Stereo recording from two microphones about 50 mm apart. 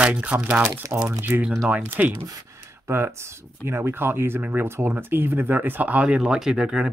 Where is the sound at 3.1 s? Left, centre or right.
Right; by 6.9 s centre.